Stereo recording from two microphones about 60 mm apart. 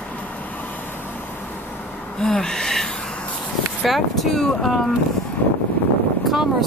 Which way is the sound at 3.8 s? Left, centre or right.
Centre.